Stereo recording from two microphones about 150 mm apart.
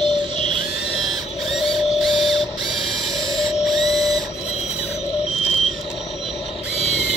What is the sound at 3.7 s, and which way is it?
Printer, centre (ahead or behind).